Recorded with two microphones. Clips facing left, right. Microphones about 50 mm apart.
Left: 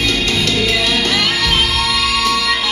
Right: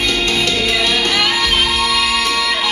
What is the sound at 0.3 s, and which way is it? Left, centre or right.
Music, centre.